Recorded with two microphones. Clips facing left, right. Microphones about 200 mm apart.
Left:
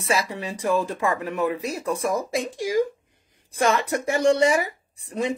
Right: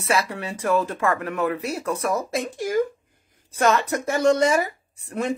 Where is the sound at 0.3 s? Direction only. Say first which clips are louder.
Right 1 dB; 15° left (ahead or behind).